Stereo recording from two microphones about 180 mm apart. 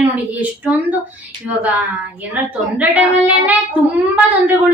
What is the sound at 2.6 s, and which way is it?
Speech, 10° right (ahead or behind).